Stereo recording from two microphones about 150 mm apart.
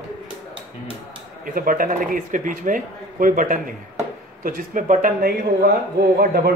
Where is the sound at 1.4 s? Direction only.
65° right (ahead or behind).